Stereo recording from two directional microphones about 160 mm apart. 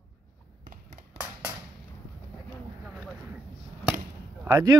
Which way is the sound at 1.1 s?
10° right (ahead or behind).